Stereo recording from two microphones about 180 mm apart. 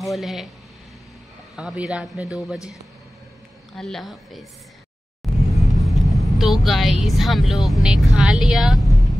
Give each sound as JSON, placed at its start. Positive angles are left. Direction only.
{"t": 0.0, "sound": "speech", "side_deg": 0}
{"t": 1.6, "sound": "speech", "side_deg": -5}
{"t": 3.7, "sound": "speech", "side_deg": 0}
{"t": 5.2, "sound": "music", "side_deg": 0}
{"t": 5.8, "sound": "speech", "side_deg": 0}